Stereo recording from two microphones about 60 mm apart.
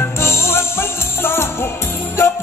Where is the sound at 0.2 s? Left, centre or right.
Left.